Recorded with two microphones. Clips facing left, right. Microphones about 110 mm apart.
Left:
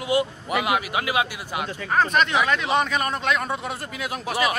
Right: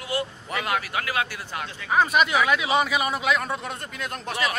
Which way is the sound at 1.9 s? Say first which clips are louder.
Even; 5° right (ahead or behind).